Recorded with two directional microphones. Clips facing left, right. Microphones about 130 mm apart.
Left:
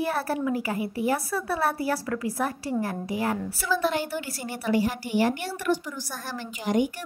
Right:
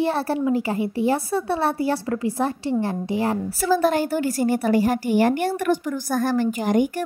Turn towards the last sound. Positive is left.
turn(degrees=-50)  # may be behind; listen again after turning